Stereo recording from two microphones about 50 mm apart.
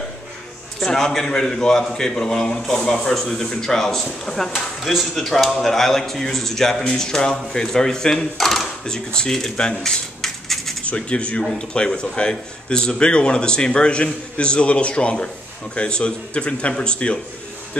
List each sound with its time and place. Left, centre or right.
0.7 s a man's voice: centre
10.2 s a sound: centre
10.8 s a man's voice: left